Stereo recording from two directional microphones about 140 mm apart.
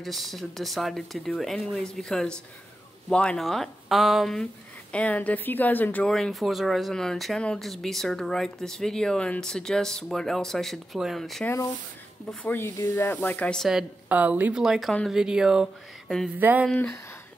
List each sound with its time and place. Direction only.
0.0 s speech: centre (ahead or behind)
11.4 s speech: 20° left (ahead or behind); by 16.3 s centre (ahead or behind)
16.3 s speech: 15° right (ahead or behind)
16.6 s speech: 10° left (ahead or behind)